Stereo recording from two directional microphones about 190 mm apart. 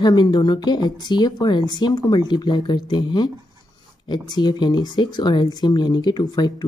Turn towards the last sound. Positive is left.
turn(degrees=20)  # may be behind; listen again after turning